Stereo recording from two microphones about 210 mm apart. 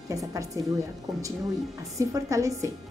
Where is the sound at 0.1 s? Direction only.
15° right (ahead or behind).